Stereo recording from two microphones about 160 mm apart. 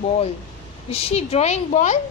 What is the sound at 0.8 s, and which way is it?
A woman's voice, 40° left (ahead or behind).